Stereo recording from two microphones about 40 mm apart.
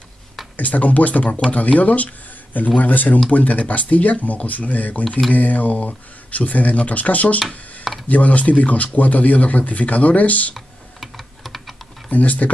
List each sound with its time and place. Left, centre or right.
0.6 s speech: left
7.5 s a sound: left
8.1 s speech: left
10.5 s computer keyboard: centre
12.1 s speech: left